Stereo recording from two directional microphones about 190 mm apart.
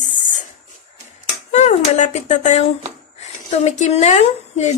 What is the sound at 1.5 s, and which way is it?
A woman's voice, 40° left (ahead or behind).